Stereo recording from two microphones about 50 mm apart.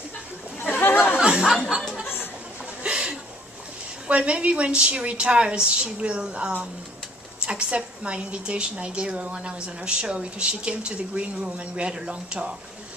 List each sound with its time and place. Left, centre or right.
0.6 s chatter: left
1.2 s a sound: centre
2.8 s chuckle: centre
4.1 s a woman's voice: right